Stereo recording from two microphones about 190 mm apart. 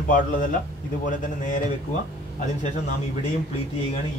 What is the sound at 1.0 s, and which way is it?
Speech, 40° left (ahead or behind).